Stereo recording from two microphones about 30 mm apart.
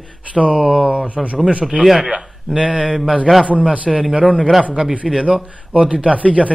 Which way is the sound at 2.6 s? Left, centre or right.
Right.